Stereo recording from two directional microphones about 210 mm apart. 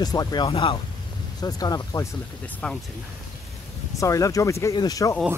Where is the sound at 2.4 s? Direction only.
5° left (ahead or behind).